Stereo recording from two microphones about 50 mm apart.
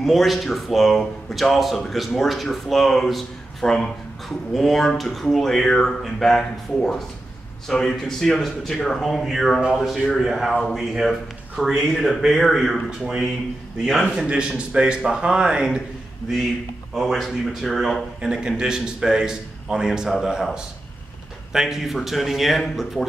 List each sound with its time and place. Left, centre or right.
0.0 s a man's voice: centre
9.6 s a man's voice: centre
10.1 s a man's voice: centre
14.1 s a man's voice: centre
16.9 s speech: centre
18.2 s a man's voice: centre
21.5 s speech: centre